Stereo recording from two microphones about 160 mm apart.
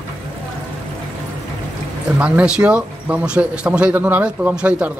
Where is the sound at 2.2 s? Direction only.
5° right (ahead or behind).